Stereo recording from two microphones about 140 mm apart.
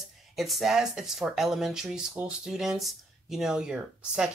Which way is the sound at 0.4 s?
Centre (ahead or behind).